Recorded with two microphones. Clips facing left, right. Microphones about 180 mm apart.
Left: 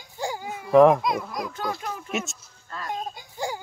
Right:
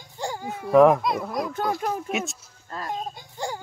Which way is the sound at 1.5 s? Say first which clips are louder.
Right 5 dB; 50° right (ahead or behind).